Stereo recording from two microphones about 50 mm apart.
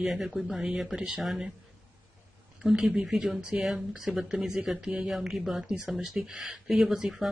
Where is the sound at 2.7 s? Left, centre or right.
Centre.